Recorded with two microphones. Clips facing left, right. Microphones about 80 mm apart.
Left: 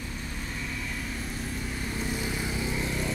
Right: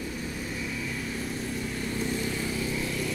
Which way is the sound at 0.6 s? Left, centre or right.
Centre.